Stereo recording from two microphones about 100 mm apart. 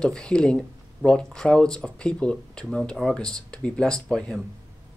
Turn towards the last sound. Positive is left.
turn(degrees=5)  # may be behind; listen again after turning